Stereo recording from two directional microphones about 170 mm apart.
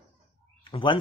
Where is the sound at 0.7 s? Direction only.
30° left (ahead or behind).